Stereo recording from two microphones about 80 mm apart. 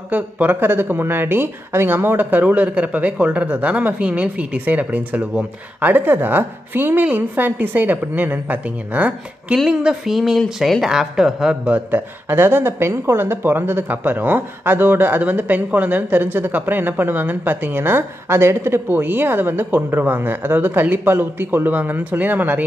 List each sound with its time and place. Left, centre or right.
0.1 s speech: right
9.7 s speech: centre
11.7 s speech: right